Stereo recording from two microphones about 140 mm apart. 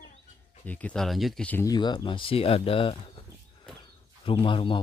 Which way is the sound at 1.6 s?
30° left (ahead or behind).